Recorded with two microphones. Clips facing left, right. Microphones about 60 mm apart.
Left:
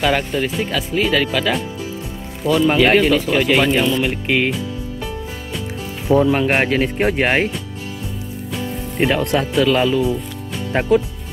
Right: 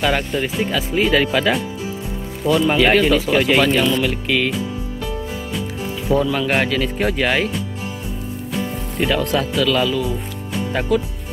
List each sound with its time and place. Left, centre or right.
0.0 s speech: centre
2.4 s speech: centre
3.6 s speech: centre
4.1 s speech: left
6.1 s speech: left
9.0 s speech: left